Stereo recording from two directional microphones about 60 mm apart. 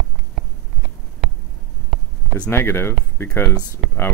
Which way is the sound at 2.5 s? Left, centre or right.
Left.